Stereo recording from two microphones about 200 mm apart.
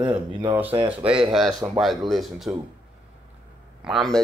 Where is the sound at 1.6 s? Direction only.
10° right (ahead or behind).